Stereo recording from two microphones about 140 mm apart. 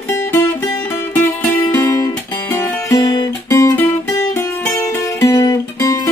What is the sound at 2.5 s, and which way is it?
Music, 15° left (ahead or behind).